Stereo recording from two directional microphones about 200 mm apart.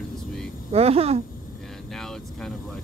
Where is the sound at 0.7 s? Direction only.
30° right (ahead or behind).